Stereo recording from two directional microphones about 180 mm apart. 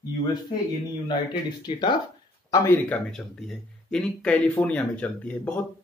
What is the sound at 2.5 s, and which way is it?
Speech, 15° left (ahead or behind).